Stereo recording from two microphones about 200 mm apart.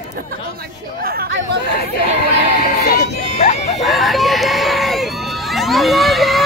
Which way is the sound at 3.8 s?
Centre (ahead or behind).